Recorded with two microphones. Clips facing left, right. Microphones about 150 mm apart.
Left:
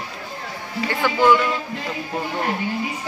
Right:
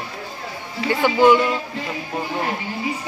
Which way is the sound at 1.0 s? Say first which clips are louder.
Right 3 dB; 20° right (ahead or behind).